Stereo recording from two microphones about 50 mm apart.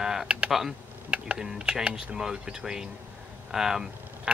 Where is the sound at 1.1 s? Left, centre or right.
Right.